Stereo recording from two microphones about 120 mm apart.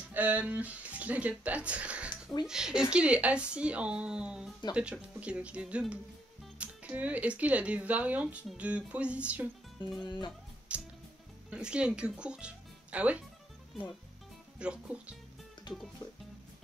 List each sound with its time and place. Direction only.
0.1 s speech: 10° right (ahead or behind)
10.7 s music: 10° right (ahead or behind)
11.5 s speech: 10° right (ahead or behind)
14.6 s speech: 10° right (ahead or behind)
15.7 s music: 40° left (ahead or behind)